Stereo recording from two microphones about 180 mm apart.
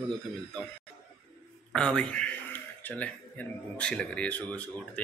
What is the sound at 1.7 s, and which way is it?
Speech, 5° left (ahead or behind).